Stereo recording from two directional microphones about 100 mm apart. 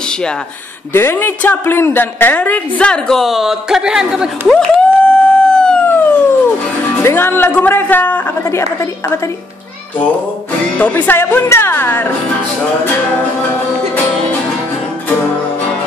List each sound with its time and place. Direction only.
0.9 s a woman's voice: 20° left (ahead or behind); by 4.3 s 5° right (ahead or behind)
4.5 s a sound: 10° left (ahead or behind)
5.9 s howl: 20° left (ahead or behind)
7.0 s a man's voice: 20° left (ahead or behind)
10.8 s a man's voice: 15° left (ahead or behind)